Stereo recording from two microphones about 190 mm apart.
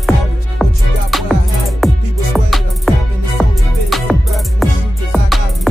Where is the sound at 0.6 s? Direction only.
Centre (ahead or behind).